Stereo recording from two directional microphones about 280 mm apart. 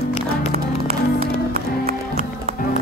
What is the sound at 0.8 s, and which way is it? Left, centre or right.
Music, right.